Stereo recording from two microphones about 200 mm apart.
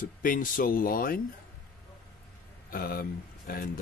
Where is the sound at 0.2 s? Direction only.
45° left (ahead or behind).